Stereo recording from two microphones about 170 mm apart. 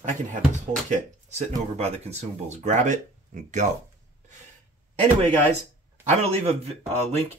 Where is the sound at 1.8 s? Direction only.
40° right (ahead or behind).